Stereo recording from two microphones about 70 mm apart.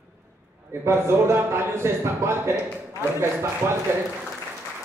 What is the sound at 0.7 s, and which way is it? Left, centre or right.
A man's voice, right.